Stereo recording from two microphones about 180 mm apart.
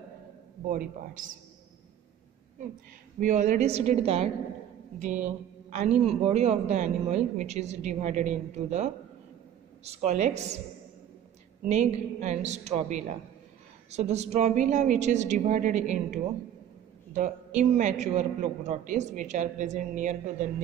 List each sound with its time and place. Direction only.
0.7 s a man's voice: 50° right (ahead or behind)
3.2 s a man's voice: 40° right (ahead or behind)
11.6 s a man's voice: 40° right (ahead or behind)
17.6 s a man's voice: 40° right (ahead or behind)